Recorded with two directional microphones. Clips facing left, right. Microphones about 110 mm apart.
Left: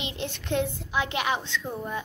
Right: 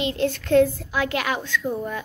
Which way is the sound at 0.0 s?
20° left (ahead or behind).